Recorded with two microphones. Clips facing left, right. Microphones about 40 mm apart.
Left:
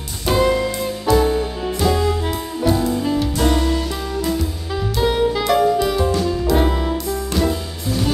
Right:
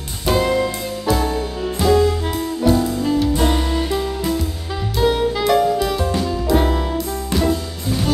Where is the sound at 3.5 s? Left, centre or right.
Centre.